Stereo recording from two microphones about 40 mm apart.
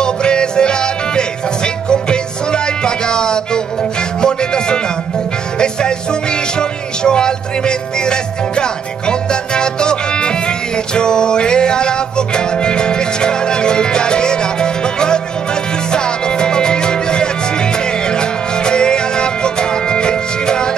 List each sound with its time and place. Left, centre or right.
0.0 s music: left